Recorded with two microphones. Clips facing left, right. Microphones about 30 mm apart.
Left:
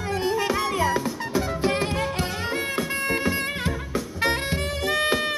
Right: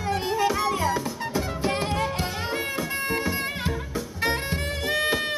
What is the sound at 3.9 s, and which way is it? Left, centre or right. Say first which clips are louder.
Music: left 3 dB; centre.